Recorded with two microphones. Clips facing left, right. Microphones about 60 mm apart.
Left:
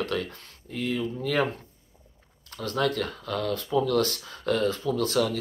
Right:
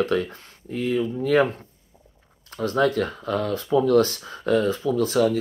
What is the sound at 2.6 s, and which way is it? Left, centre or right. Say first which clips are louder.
Speech: right 6 dB; right.